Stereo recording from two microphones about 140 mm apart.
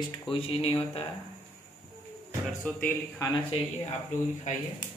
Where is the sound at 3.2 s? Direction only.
25° left (ahead or behind).